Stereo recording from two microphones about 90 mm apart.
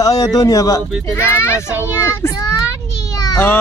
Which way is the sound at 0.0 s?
40° left (ahead or behind).